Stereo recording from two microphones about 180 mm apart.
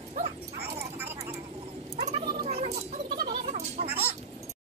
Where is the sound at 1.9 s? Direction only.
35° right (ahead or behind).